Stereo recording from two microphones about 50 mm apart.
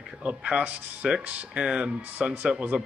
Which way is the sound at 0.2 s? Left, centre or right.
Right.